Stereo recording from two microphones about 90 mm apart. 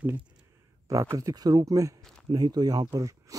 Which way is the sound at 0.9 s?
35° right (ahead or behind).